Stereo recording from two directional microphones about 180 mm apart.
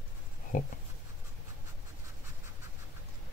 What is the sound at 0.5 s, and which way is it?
Speech, 45° left (ahead or behind).